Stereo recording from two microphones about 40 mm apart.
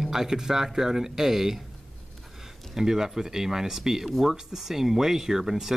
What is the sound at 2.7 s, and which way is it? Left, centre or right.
Speech, centre.